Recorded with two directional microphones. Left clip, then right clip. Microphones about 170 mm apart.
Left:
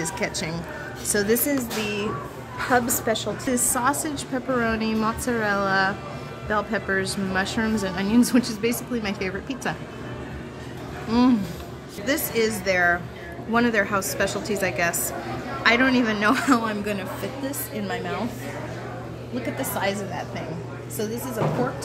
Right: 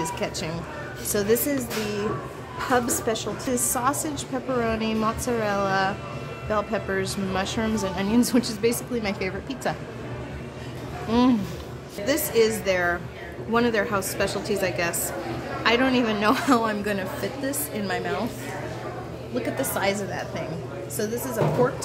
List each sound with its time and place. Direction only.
0.0 s a woman's voice: centre (ahead or behind)
11.1 s a woman's voice: 15° right (ahead or behind)
17.5 s a woman's voice: 15° right (ahead or behind)
19.6 s a woman's voice: 10° right (ahead or behind)